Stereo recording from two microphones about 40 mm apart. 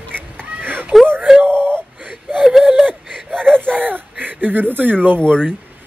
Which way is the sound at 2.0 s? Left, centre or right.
Right.